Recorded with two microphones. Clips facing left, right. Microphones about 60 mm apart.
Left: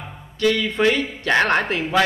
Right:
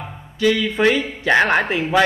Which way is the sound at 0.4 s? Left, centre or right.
Centre.